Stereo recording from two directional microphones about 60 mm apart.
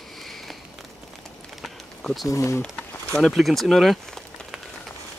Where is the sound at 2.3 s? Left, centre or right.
Left.